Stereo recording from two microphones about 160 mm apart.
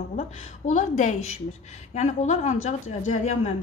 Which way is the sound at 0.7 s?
50° left (ahead or behind).